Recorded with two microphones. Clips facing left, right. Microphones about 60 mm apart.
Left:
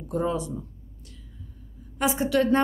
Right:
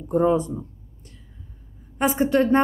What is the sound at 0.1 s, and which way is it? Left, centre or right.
A woman's voice, right.